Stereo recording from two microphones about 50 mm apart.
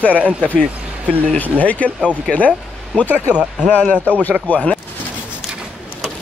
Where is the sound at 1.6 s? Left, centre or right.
Left.